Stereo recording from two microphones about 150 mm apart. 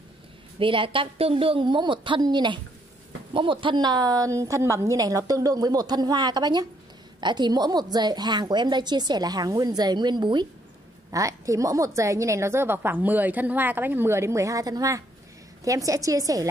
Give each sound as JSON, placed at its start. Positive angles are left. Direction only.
{"t": 0.6, "sound": "a woman's voice", "side_deg": -35}